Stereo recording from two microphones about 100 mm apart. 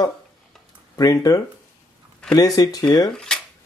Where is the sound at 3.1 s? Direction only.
5° left (ahead or behind).